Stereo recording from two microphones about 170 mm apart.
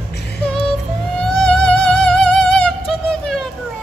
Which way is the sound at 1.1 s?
5° left (ahead or behind).